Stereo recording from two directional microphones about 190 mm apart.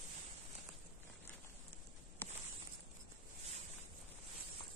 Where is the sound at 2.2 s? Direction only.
10° left (ahead or behind).